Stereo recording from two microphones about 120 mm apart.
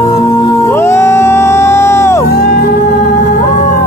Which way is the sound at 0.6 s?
25° left (ahead or behind).